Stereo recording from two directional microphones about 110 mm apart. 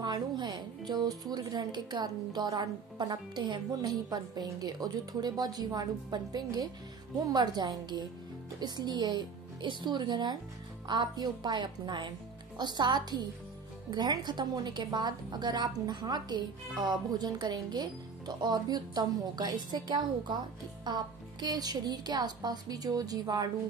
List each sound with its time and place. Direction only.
0.0 s a woman's voice: 40° right (ahead or behind)